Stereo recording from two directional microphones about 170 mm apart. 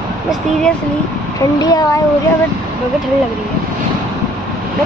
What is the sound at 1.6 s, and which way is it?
Speech, 20° left (ahead or behind).